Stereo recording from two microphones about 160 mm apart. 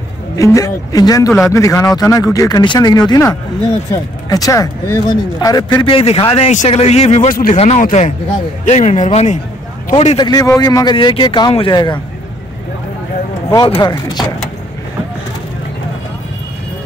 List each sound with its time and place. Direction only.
0.4 s speech: 20° left (ahead or behind); by 9.4 s 45° left (ahead or behind)
9.9 s speech: 35° left (ahead or behind)
13.7 s speech: 25° left (ahead or behind)